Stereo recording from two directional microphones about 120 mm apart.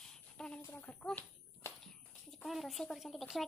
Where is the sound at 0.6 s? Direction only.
15° left (ahead or behind).